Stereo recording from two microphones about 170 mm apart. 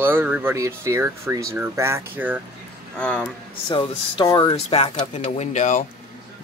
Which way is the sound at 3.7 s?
30° left (ahead or behind).